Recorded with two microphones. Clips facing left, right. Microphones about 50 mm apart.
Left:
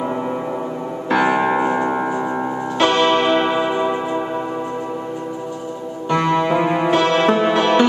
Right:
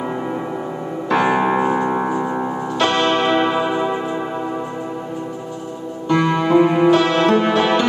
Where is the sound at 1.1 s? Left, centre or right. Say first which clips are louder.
Even; centre.